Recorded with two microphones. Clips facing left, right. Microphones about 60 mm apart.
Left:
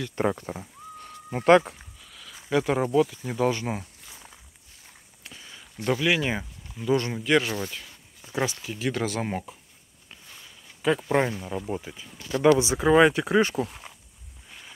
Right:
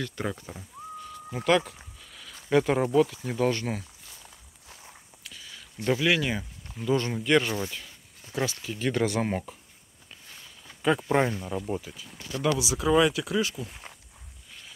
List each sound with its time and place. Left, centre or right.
0.1 s speech: left
0.6 s a sound: left
2.5 s speech: centre
5.2 s a sound: left
5.8 s speech: centre
6.1 s speech: left
6.7 s speech: centre
8.2 s speech: left
8.6 s speech: centre
10.8 s speech: centre
11.8 s speech: left